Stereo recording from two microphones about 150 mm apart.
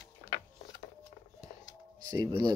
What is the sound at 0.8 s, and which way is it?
Scissors, 40° left (ahead or behind).